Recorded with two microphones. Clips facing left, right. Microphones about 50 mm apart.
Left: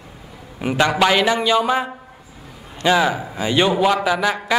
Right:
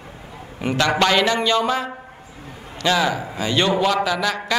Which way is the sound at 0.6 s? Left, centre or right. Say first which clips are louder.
Left 2 dB; centre.